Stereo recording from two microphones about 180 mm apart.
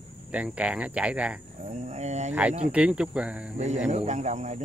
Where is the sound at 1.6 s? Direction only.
40° right (ahead or behind).